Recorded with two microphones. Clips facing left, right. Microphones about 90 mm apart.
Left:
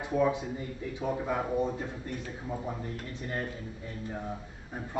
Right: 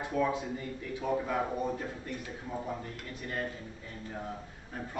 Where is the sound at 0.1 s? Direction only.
20° left (ahead or behind).